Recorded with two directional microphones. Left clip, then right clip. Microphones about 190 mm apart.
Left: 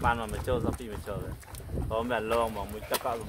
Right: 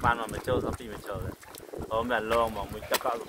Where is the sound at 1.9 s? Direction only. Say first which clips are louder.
Right 2 dB; 20° left (ahead or behind).